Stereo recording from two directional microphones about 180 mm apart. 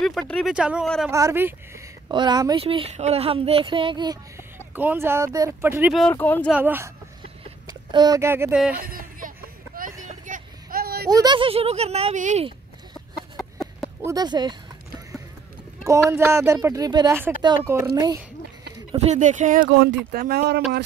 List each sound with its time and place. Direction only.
0.0 s speech: centre (ahead or behind)
1.1 s speech: 15° right (ahead or behind)
4.7 s speech: 10° right (ahead or behind)
6.1 s speech: 10° left (ahead or behind)
6.5 s speech: 10° right (ahead or behind)
7.6 s speech: 20° right (ahead or behind)
8.7 s a sound: 50° right (ahead or behind)
9.8 s vehicle: 45° right (ahead or behind)
11.1 s speech: 20° right (ahead or behind); by 12.4 s 40° right (ahead or behind)
13.4 s a sound: centre (ahead or behind)
14.0 s speech: 20° right (ahead or behind)
16.1 s speech: 15° right (ahead or behind)
18.9 s speech: 40° right (ahead or behind); by 20.6 s 60° right (ahead or behind)